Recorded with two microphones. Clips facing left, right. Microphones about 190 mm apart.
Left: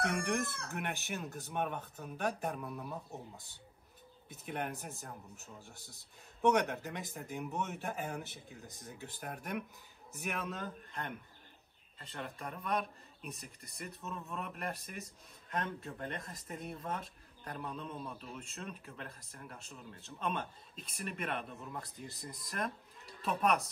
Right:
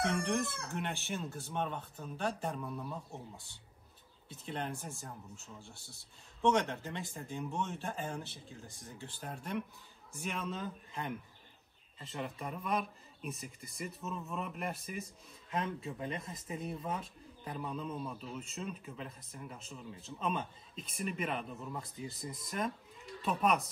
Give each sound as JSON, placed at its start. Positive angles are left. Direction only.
{"t": 0.6, "sound": "speech", "side_deg": 5}